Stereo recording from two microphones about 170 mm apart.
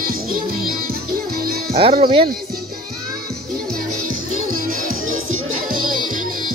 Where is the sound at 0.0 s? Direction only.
60° right (ahead or behind).